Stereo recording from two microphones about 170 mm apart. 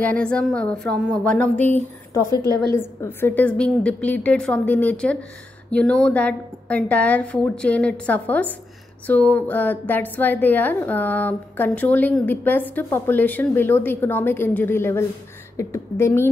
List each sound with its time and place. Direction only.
0.0 s a woman's voice: 5° left (ahead or behind)
1.8 s a woman's voice: 15° left (ahead or behind)
2.4 s a woman's voice: 20° right (ahead or behind)
2.7 s a woman's voice: 15° left (ahead or behind)